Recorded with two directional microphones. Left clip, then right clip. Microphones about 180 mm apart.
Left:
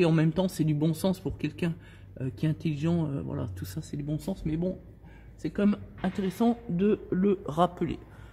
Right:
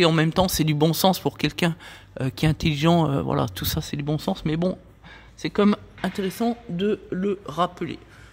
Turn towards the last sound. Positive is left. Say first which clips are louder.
# right 2 dB
turn(degrees=10)  # may be behind; listen again after turning